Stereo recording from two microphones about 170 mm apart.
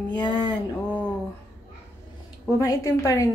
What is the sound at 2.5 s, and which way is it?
Speech, 20° left (ahead or behind).